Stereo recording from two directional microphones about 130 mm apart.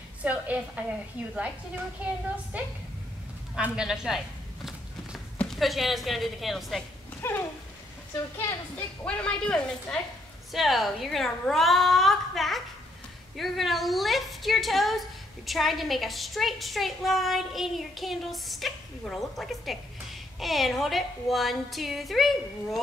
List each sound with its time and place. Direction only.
0.2 s a woman's voice: 10° right (ahead or behind)
2.5 s a woman's voice: 10° right (ahead or behind)
5.4 s a woman's voice: centre (ahead or behind)
7.2 s a sound: 20° left (ahead or behind)
8.4 s a woman's voice: 20° left (ahead or behind)
9.0 s a woman's voice: 10° left (ahead or behind)